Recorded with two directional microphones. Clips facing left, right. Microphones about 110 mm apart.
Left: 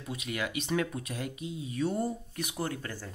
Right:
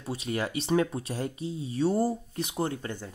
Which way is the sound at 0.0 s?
35° right (ahead or behind).